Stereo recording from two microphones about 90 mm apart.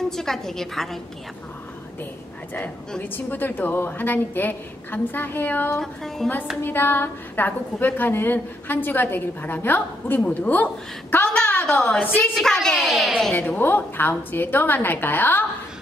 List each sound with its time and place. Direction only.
0.1 s a woman's voice: 5° left (ahead or behind)
3.0 s a woman's voice: 20° left (ahead or behind)
5.8 s a woman's voice: 5° left (ahead or behind)
6.6 s a woman's voice: 25° left (ahead or behind)
11.2 s a woman's voice: 10° left (ahead or behind)
13.3 s a woman's voice: 20° left (ahead or behind)